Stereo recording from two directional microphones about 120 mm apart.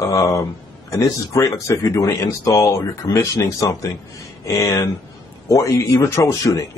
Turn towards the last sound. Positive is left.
turn(degrees=25)  # may be behind; listen again after turning